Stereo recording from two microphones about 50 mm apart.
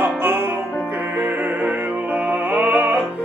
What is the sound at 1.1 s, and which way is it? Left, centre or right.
Music, right.